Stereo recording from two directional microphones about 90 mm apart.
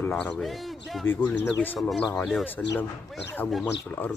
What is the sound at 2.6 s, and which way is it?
Speech, 15° left (ahead or behind).